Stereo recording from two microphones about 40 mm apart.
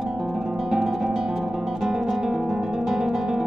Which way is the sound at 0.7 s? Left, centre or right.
Centre.